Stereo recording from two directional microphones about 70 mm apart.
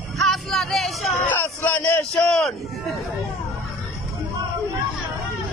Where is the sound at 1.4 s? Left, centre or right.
Left.